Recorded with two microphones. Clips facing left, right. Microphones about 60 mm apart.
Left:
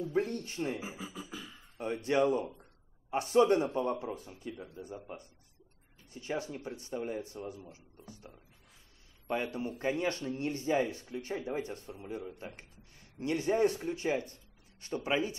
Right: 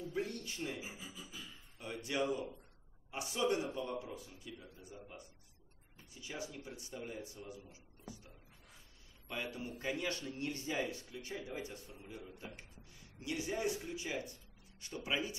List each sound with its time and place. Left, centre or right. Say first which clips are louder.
0.0 s speech: left 8 dB; left
0.7 s speech: left 7 dB; left
1.8 s speech: left 9 dB; left
7.7 s speech: left 1 dB; left